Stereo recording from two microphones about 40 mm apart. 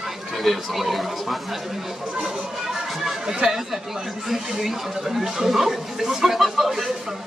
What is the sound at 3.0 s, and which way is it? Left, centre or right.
Speech, centre.